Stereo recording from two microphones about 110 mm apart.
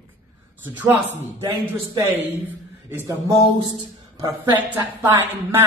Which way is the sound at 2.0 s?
25° right (ahead or behind).